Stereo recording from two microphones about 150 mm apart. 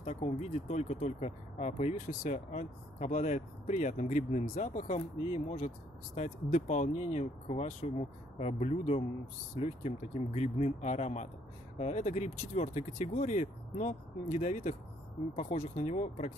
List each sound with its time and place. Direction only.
0.0 s speech: 50° left (ahead or behind)